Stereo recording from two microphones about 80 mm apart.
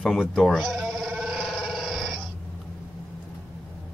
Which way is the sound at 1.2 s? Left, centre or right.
Centre.